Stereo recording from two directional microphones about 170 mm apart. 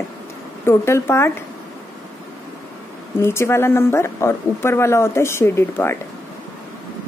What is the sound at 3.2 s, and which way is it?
A woman's voice, 15° left (ahead or behind).